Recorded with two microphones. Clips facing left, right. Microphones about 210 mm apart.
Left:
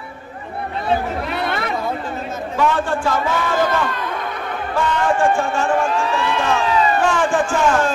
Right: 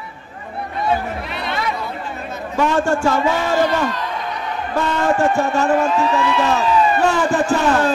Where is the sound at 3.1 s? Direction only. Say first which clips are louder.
Right 2 dB; 50° left (ahead or behind).